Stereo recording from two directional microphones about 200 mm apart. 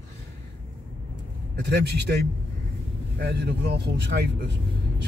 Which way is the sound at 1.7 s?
60° right (ahead or behind).